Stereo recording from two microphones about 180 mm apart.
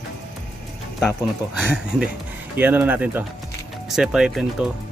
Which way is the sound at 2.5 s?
10° right (ahead or behind).